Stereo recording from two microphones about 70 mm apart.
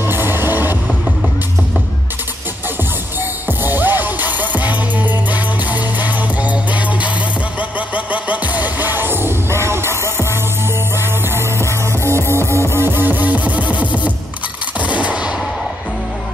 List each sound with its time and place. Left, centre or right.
0.0 s music: right
3.4 s music: right
11.2 s music: right
14.8 s machine gun: centre